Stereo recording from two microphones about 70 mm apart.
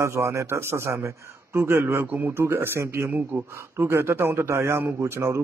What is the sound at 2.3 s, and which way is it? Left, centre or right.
A man's voice, right.